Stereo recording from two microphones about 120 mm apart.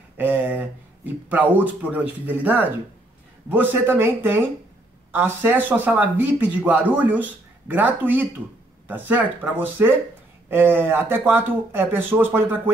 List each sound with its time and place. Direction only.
0.2 s speech: 15° right (ahead or behind)